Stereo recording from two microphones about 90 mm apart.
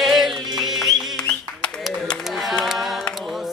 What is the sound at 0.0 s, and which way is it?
Music, 5° right (ahead or behind).